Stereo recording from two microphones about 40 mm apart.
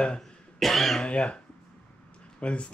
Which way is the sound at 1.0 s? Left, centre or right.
Left.